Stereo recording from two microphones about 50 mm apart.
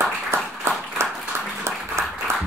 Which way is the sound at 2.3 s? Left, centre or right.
Right.